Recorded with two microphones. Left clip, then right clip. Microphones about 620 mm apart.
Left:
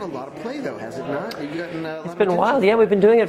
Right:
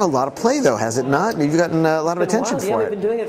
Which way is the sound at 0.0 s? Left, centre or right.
Right.